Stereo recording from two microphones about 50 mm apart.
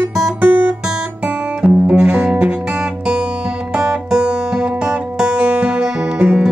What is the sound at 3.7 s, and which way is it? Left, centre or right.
Music, centre.